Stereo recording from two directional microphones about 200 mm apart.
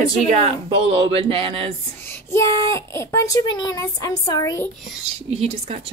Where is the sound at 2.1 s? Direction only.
15° left (ahead or behind).